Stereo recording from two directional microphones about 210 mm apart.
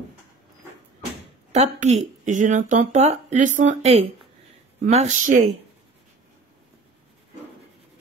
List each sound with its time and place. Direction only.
1.5 s a woman's voice: 30° right (ahead or behind)